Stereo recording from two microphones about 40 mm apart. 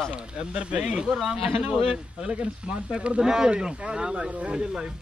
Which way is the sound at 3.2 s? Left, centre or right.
Centre.